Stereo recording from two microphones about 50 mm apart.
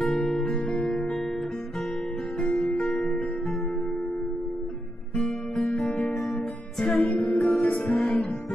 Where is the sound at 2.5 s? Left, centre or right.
Centre.